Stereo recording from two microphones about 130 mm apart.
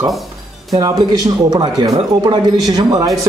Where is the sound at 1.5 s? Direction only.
30° right (ahead or behind).